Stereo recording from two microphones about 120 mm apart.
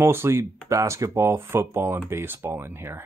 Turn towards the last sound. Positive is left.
turn(degrees=-20)  # may be behind; listen again after turning